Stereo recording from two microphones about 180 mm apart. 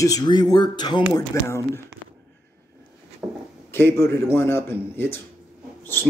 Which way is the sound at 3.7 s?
15° left (ahead or behind).